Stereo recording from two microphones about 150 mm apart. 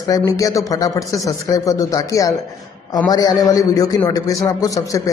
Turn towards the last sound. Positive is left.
turn(degrees=20)  # may be behind; listen again after turning